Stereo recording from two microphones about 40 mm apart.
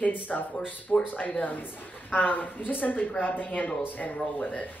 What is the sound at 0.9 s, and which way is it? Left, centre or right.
Speech, left.